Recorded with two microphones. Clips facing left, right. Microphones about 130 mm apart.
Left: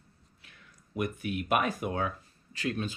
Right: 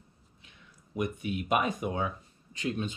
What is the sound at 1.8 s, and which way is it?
Speech, 5° left (ahead or behind).